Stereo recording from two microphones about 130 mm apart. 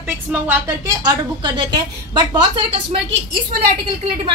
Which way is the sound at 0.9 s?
30° right (ahead or behind).